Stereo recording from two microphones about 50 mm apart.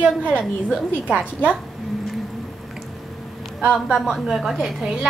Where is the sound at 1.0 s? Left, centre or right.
Right.